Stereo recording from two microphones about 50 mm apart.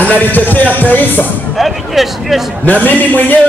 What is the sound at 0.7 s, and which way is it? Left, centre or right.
Speech, left.